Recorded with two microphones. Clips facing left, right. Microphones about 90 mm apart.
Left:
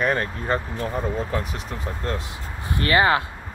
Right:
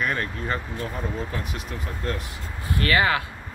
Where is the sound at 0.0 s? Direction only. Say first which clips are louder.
Left 4 dB; 35° left (ahead or behind).